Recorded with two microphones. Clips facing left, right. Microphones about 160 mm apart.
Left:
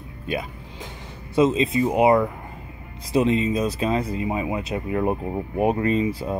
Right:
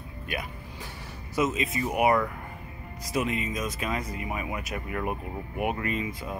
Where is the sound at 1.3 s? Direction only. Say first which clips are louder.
Left 8 dB; 30° left (ahead or behind).